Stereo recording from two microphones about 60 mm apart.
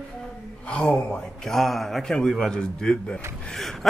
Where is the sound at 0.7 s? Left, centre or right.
Centre.